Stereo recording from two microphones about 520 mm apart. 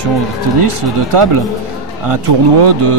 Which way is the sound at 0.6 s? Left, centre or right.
Right.